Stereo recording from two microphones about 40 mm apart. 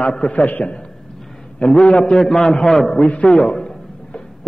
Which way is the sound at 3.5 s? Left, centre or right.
Centre.